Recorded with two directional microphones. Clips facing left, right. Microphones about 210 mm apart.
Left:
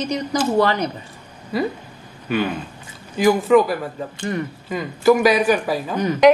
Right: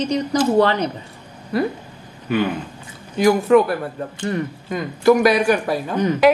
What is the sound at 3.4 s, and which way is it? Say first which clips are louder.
A woman's voice: right 1 dB; centre (ahead or behind).